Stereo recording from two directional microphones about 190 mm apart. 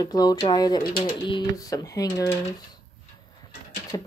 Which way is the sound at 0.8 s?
50° left (ahead or behind).